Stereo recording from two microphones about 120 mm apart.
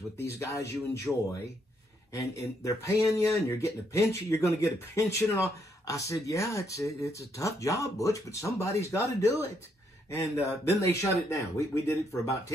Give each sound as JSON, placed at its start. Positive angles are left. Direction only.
{"t": 0.2, "sound": "speech", "side_deg": 25}
{"t": 1.1, "sound": "speech", "side_deg": 5}
{"t": 2.1, "sound": "speech", "side_deg": 25}